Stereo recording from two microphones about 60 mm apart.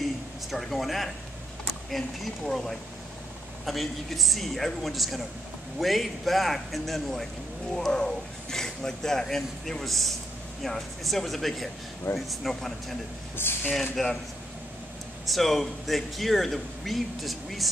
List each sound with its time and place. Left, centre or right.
0.5 s speech: centre
13.4 s speech: left
14.0 s speech: centre
15.2 s speech: centre